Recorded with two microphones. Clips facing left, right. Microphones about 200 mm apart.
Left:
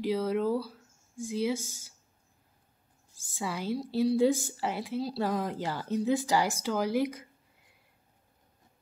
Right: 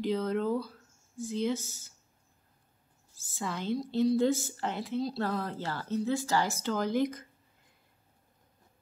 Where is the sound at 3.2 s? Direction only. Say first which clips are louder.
Left 1 dB; 15° left (ahead or behind).